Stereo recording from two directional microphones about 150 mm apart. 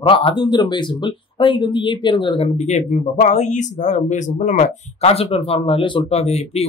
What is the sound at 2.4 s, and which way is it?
Speech, 50° left (ahead or behind).